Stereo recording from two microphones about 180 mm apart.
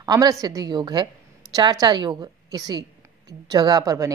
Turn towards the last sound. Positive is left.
turn(degrees=-20)  # may be behind; listen again after turning